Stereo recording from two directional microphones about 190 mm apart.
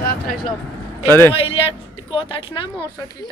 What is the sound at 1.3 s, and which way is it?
Speech, 30° left (ahead or behind).